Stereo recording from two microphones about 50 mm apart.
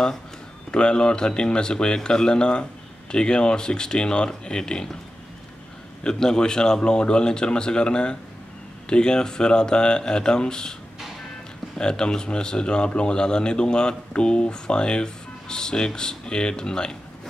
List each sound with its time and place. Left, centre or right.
0.7 s speech: centre
6.0 s speech: centre
11.8 s speech: centre